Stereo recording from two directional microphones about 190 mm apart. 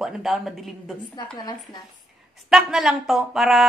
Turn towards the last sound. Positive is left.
turn(degrees=0)  # may be behind; listen again after turning